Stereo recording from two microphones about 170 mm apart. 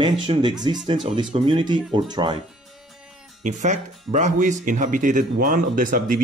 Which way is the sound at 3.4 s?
45° right (ahead or behind).